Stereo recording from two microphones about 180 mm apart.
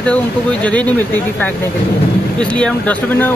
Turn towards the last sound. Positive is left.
turn(degrees=10)  # may be behind; listen again after turning